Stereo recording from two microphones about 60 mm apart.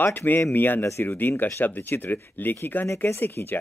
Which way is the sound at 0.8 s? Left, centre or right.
Left.